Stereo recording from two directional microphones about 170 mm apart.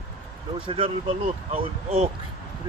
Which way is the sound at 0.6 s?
30° right (ahead or behind).